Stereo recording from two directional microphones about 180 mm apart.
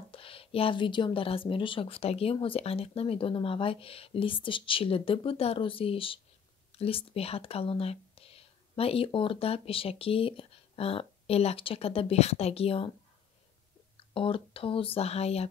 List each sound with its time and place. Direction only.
0.1 s speech: 30° left (ahead or behind)
14.1 s speech: 30° left (ahead or behind)